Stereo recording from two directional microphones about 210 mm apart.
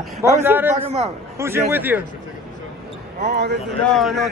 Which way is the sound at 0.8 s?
30° right (ahead or behind).